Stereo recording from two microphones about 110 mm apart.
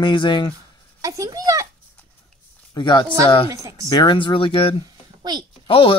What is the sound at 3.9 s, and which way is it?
Speech, 40° left (ahead or behind).